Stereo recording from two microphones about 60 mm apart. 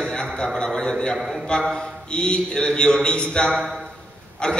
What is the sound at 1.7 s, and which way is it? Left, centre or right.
A man's voice, centre.